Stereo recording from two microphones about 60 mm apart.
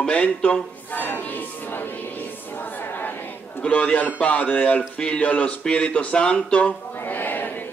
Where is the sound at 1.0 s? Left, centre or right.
Left.